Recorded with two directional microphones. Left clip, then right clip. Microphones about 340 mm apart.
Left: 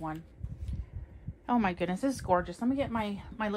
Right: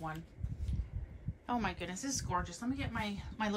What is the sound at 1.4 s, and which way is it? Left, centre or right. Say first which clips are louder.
A woman's voice: left 7 dB; left.